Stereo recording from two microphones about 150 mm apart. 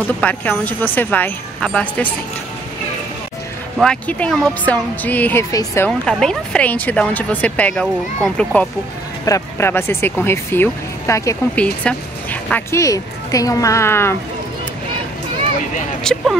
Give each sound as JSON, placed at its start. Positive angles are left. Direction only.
{"t": 0.0, "sound": "speech", "side_deg": 10}
{"t": 3.7, "sound": "speech", "side_deg": 5}
{"t": 5.9, "sound": "speech", "side_deg": 5}
{"t": 11.5, "sound": "speech", "side_deg": 10}
{"t": 12.8, "sound": "speech", "side_deg": 25}
{"t": 16.0, "sound": "speech", "side_deg": 5}